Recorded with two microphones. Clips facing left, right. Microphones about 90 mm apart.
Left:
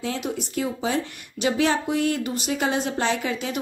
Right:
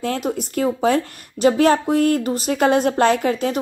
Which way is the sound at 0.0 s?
50° right (ahead or behind).